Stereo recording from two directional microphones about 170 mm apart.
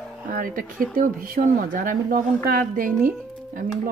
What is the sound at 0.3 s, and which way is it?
Speech, 55° right (ahead or behind).